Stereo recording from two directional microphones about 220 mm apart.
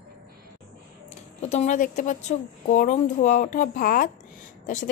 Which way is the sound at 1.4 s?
30° left (ahead or behind).